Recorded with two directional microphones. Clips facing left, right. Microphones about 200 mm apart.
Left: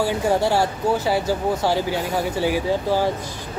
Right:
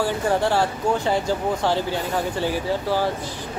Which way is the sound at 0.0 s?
10° left (ahead or behind).